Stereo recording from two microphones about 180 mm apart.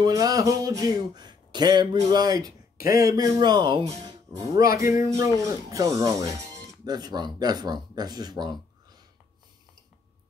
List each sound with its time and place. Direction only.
0.0 s speech: 20° right (ahead or behind)
4.4 s music: 20° right (ahead or behind)
5.4 s speech: 15° right (ahead or behind)